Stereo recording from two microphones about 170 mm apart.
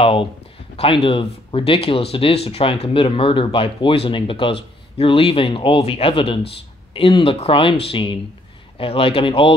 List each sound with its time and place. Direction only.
0.0 s speech: 30° left (ahead or behind)